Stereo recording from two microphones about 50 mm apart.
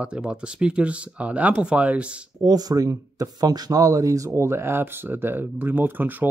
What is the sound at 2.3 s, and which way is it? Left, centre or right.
Speech, right.